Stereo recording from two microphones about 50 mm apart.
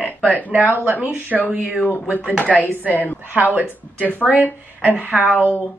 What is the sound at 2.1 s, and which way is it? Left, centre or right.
Speech, left.